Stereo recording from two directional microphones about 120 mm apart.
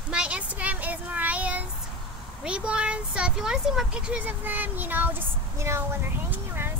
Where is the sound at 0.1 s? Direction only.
10° right (ahead or behind).